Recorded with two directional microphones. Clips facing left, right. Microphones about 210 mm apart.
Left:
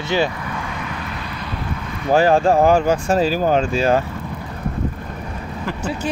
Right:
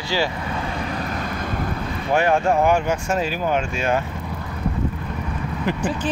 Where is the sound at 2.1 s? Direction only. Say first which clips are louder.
Left 4 dB; 30° left (ahead or behind).